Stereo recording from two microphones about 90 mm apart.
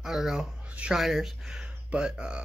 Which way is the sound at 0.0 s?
5° right (ahead or behind).